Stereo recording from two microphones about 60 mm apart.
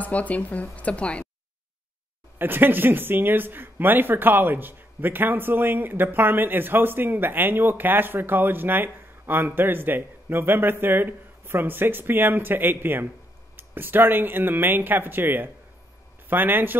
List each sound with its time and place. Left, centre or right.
0.0 s speech: left
2.3 s speech: right